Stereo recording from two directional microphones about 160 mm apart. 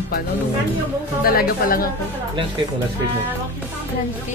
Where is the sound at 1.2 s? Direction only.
65° left (ahead or behind).